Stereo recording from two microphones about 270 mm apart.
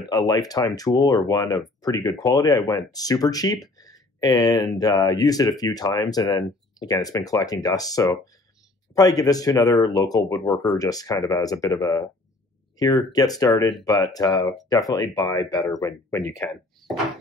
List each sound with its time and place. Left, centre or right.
0.1 s speech: centre